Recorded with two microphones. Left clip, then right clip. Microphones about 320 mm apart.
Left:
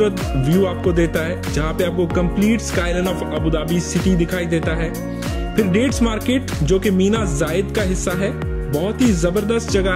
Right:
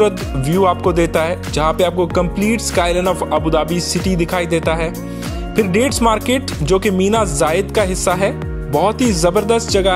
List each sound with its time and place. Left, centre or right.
0.6 s music: centre